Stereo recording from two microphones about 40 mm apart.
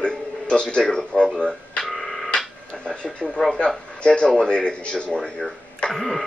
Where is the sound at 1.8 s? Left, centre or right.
Centre.